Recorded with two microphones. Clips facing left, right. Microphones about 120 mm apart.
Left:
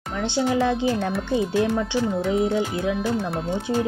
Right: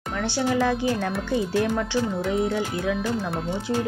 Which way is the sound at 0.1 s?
20° left (ahead or behind).